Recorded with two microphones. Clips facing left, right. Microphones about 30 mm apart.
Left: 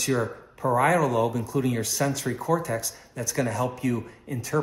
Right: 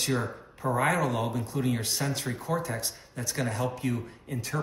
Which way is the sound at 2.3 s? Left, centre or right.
Right.